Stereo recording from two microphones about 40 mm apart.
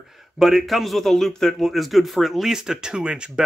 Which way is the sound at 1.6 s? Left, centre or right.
Centre.